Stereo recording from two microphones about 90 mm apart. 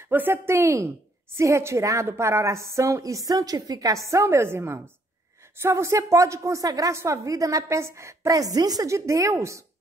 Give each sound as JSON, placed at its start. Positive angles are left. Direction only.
{"t": 0.1, "sound": "a woman's voice", "side_deg": -25}